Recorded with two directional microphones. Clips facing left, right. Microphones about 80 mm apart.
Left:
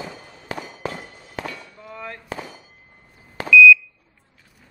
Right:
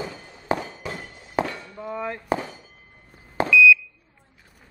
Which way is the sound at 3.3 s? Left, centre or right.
Right.